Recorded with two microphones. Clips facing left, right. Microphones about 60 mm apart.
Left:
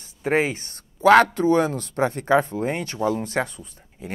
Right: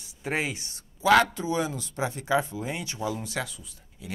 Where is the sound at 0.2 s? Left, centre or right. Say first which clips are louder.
Left 8 dB; left.